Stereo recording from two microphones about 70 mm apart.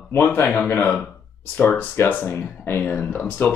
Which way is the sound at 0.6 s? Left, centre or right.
Left.